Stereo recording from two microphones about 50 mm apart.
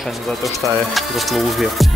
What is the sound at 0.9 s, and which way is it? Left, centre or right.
Speech, centre.